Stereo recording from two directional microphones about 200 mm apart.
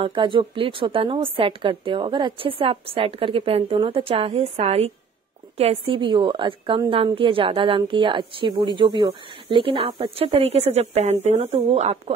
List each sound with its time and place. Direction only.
0.0 s a woman's voice: 25° right (ahead or behind)